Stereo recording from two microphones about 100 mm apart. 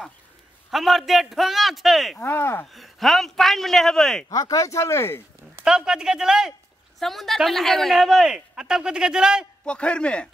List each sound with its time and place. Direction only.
0.7 s speech: centre (ahead or behind)
2.1 s speech: 20° left (ahead or behind)
2.6 s speech: centre (ahead or behind)
4.3 s speech: 40° left (ahead or behind)
5.7 s speech: 5° right (ahead or behind)
9.7 s a man's voice: 10° left (ahead or behind)